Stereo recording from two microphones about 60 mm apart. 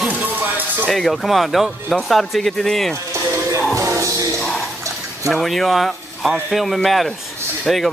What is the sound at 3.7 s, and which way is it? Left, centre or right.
Music, right.